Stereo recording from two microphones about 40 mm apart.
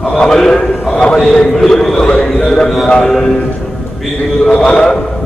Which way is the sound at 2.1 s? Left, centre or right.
Left.